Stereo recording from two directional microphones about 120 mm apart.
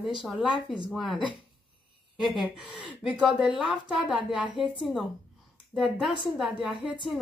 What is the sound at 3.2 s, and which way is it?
Speech, centre (ahead or behind).